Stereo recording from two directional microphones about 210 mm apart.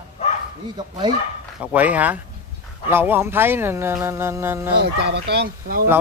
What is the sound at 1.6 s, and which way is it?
Speech, 5° right (ahead or behind).